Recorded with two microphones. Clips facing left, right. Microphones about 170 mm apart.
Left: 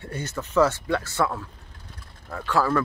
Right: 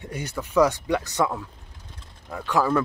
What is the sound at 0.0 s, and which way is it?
Speech, 10° right (ahead or behind).